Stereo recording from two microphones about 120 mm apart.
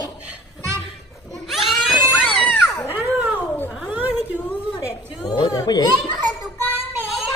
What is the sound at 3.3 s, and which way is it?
Cat, 15° left (ahead or behind).